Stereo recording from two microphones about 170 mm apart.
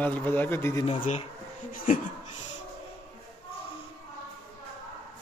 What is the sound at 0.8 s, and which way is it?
Speech, 40° left (ahead or behind).